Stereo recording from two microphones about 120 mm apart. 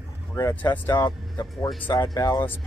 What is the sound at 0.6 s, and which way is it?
Speech, 15° left (ahead or behind).